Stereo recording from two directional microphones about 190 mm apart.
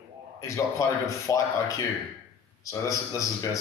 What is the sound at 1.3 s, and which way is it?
Speech, 15° left (ahead or behind).